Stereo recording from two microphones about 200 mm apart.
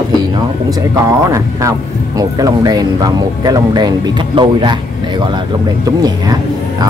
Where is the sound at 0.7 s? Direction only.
15° right (ahead or behind).